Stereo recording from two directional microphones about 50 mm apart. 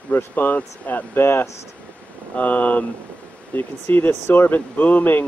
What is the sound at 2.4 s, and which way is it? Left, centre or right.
Speech, left.